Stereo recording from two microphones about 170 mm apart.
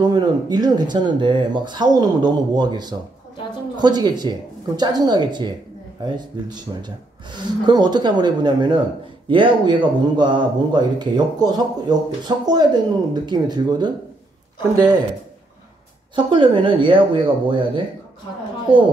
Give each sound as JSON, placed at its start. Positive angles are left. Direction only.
{"t": 0.0, "sound": "speech", "side_deg": -25}
{"t": 16.3, "sound": "speech", "side_deg": -30}